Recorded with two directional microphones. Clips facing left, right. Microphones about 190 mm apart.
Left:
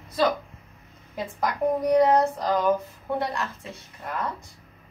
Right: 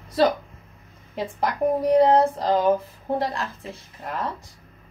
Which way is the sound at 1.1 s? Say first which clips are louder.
Right 2 dB; 30° right (ahead or behind).